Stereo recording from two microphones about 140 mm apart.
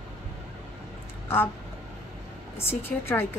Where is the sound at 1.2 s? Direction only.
15° left (ahead or behind).